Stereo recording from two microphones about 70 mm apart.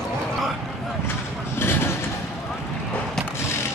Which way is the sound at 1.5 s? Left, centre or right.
Left.